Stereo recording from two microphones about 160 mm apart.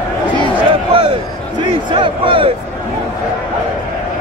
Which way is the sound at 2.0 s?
35° right (ahead or behind).